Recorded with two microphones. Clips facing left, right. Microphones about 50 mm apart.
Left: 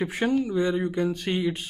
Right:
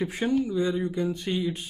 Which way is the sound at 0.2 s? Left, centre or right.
Left.